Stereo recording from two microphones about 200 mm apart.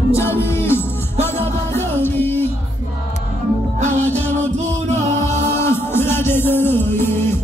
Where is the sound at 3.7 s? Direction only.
35° right (ahead or behind).